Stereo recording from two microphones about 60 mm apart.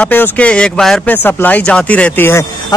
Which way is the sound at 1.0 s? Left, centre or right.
Left.